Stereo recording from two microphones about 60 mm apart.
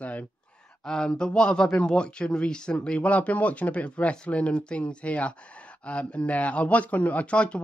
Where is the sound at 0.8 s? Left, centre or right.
Centre.